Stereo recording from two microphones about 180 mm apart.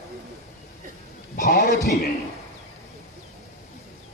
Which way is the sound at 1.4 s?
60° left (ahead or behind).